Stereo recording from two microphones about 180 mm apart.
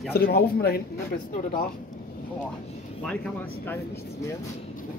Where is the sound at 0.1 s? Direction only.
60° left (ahead or behind).